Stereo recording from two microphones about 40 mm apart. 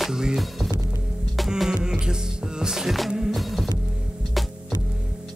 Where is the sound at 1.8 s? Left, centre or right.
Centre.